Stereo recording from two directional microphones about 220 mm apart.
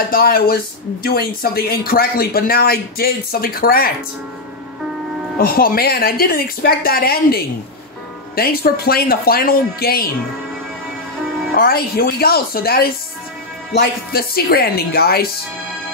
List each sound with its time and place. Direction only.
0.1 s speech: 45° left (ahead or behind)
5.4 s speech: 40° left (ahead or behind)
11.5 s speech: 45° left (ahead or behind)